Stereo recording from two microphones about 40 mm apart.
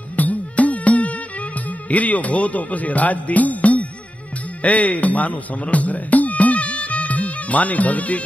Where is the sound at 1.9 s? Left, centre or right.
Left.